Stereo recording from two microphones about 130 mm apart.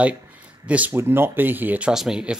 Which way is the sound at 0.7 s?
10° right (ahead or behind).